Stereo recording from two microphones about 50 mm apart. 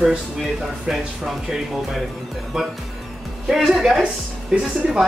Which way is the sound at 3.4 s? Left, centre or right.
Centre.